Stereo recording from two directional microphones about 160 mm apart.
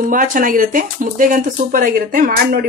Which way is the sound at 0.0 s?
55° right (ahead or behind).